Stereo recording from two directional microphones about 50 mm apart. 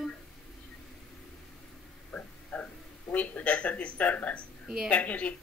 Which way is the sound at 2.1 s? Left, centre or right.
Left.